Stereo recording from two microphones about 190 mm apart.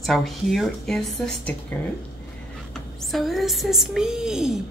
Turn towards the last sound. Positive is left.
turn(degrees=-5)  # may be behind; listen again after turning